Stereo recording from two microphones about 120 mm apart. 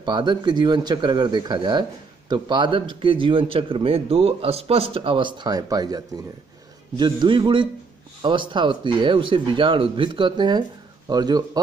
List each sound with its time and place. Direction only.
0.0 s speech: 40° right (ahead or behind)